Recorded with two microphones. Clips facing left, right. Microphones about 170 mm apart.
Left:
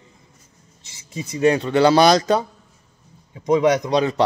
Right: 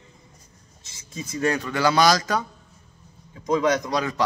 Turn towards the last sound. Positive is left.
turn(degrees=25)  # may be behind; listen again after turning